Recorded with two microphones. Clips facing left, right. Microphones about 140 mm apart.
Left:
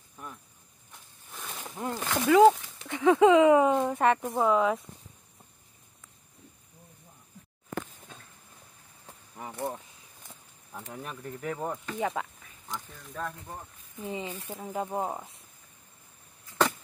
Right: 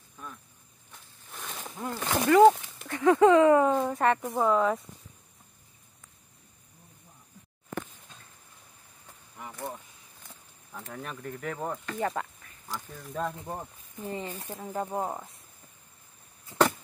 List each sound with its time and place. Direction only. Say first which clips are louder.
1.3 s a sound: right 1 dB; centre (ahead or behind)
1.6 s a sound: left 1 dB; 15° left (ahead or behind)
2.2 s speech: right 1 dB; centre (ahead or behind)
3.7 s speech: left 1 dB; centre (ahead or behind)
4.0 s speech: even; 10° left (ahead or behind)
9.0 s cricket: left 2 dB; 30° left (ahead or behind)
10.7 s speech: even; 10° left (ahead or behind)
11.6 s speech: right 1 dB; centre (ahead or behind)
13.2 s speech: right 4 dB; 25° right (ahead or behind)
14.0 s speech: even; 10° left (ahead or behind)